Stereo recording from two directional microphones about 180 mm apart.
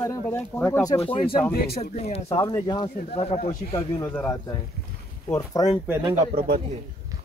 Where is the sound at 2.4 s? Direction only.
20° left (ahead or behind); by 3.8 s 35° left (ahead or behind).